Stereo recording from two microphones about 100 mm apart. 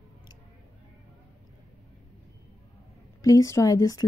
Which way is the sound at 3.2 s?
35° left (ahead or behind).